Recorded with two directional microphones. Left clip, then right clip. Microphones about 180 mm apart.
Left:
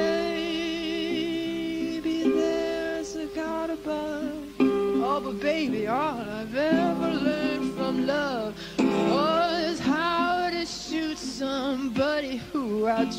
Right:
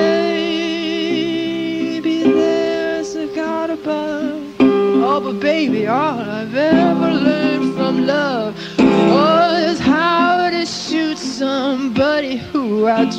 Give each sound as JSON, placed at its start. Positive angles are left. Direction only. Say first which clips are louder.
{"t": 0.0, "sound": "music", "louder": "right 11 dB", "side_deg": -25}
{"t": 2.0, "sound": "music", "louder": "right 10 dB", "side_deg": -30}
{"t": 4.6, "sound": "music", "louder": "right 11 dB", "side_deg": -25}